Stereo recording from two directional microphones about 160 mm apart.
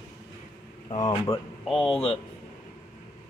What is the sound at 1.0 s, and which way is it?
Speech, 20° left (ahead or behind).